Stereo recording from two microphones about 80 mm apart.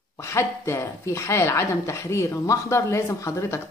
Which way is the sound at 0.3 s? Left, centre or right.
Left.